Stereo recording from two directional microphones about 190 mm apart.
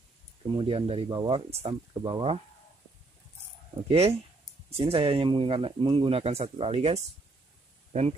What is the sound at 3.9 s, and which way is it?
Speech, 30° right (ahead or behind).